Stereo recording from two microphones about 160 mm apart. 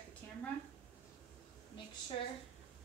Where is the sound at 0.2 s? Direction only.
10° left (ahead or behind).